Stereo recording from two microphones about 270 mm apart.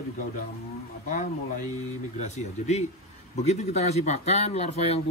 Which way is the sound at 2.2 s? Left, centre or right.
Left.